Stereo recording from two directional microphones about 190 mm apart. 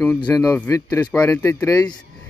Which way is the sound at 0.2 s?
15° left (ahead or behind).